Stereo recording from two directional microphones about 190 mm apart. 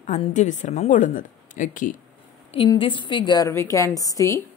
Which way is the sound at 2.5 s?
25° left (ahead or behind).